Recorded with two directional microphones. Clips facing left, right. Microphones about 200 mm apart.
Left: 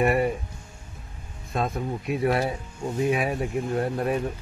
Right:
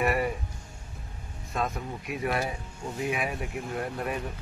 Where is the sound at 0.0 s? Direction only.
30° left (ahead or behind).